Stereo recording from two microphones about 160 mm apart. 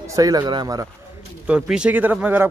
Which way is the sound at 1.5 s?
5° right (ahead or behind).